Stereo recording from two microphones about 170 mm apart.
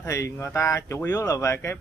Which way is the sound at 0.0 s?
15° left (ahead or behind).